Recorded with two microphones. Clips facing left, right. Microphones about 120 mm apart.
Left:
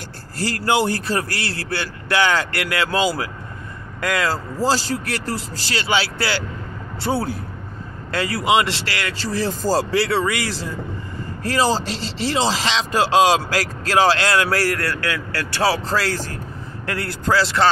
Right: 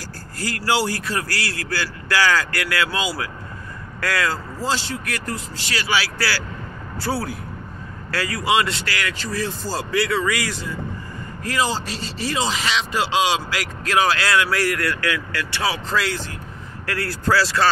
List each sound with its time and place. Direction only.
0.4 s a man's voice: 25° left (ahead or behind)
4.0 s a man's voice: 20° left (ahead or behind)
4.6 s a man's voice: 35° left (ahead or behind)
16.8 s a man's voice: 25° left (ahead or behind)